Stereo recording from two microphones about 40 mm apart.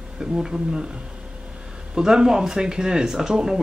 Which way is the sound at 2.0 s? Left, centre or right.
Centre.